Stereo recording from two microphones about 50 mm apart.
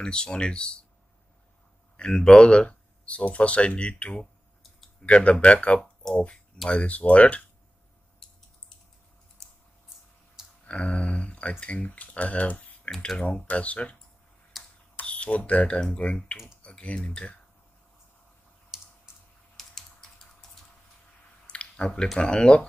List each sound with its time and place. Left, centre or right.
0.0 s speech: centre
2.0 s speech: centre
6.0 s speech: centre
6.7 s speech: left
9.4 s typing: centre
10.7 s speech: left
12.9 s speech: centre
13.2 s speech: left
14.5 s typing: centre
15.0 s speech: left
18.7 s typing: centre
19.5 s typing: centre
21.5 s a sound: centre
22.2 s speech: centre